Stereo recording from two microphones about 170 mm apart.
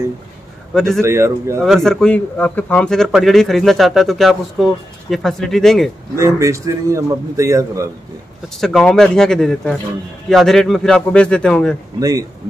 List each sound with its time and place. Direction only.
1.0 s a man's voice: 15° right (ahead or behind)
1.6 s speech: centre (ahead or behind)
6.1 s a man's voice: 20° right (ahead or behind)
8.5 s speech: centre (ahead or behind)
12.0 s a man's voice: 20° right (ahead or behind)